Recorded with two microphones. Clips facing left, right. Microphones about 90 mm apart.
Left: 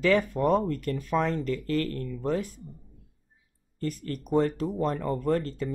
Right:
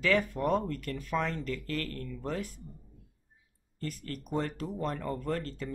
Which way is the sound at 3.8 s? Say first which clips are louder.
Left 6 dB; 25° left (ahead or behind).